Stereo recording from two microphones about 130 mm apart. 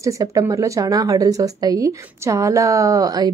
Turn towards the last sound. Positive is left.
turn(degrees=-30)  # may be behind; listen again after turning